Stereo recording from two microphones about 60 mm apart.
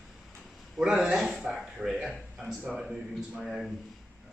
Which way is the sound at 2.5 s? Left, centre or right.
Centre.